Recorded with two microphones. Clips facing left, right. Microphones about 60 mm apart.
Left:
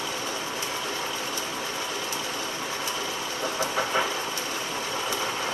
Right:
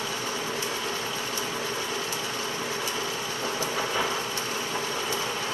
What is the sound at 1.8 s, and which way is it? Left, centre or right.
Vehicle, right.